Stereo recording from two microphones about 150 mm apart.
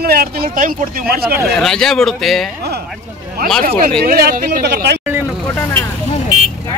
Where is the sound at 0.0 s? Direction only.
85° right.